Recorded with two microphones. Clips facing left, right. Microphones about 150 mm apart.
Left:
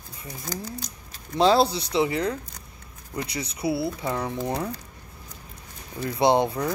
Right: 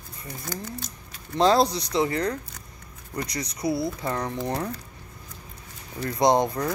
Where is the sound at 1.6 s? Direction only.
30° left (ahead or behind).